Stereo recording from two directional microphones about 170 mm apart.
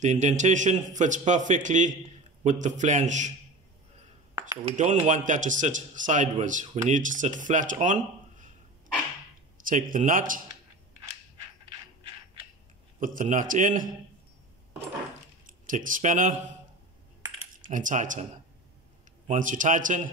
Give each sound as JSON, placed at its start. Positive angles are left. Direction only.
{"t": 0.0, "sound": "speech", "side_deg": -45}
{"t": 4.6, "sound": "speech", "side_deg": -45}
{"t": 9.7, "sound": "speech", "side_deg": -50}
{"t": 13.0, "sound": "speech", "side_deg": -50}
{"t": 15.4, "sound": "speech", "side_deg": -50}
{"t": 17.6, "sound": "speech", "side_deg": -50}
{"t": 19.2, "sound": "speech", "side_deg": -50}